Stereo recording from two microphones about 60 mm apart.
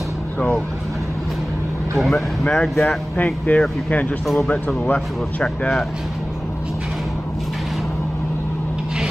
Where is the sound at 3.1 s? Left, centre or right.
Left.